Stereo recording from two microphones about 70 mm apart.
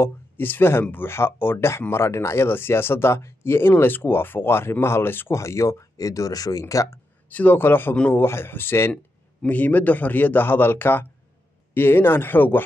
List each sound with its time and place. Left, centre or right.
0.0 s speech: left
5.4 s speech: left
6.6 s speech: left
7.2 s a man's voice: left
8.9 s a man's voice: centre